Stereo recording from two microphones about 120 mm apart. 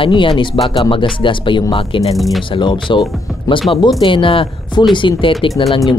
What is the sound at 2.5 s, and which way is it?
Speech, 40° left (ahead or behind).